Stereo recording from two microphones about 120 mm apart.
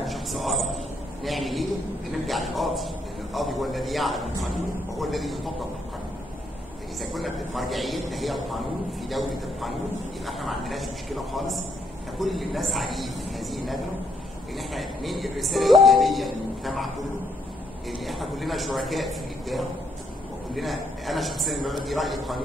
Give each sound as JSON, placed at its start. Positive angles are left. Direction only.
{"t": 0.0, "sound": "a sound", "side_deg": 0}
{"t": 1.2, "sound": "speech", "side_deg": 0}
{"t": 7.0, "sound": "a man's voice", "side_deg": 0}
{"t": 17.9, "sound": "speech", "side_deg": 0}
{"t": 20.5, "sound": "speech", "side_deg": 0}